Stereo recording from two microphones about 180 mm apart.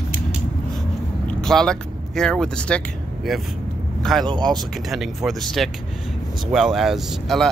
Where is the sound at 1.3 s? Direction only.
5° left (ahead or behind).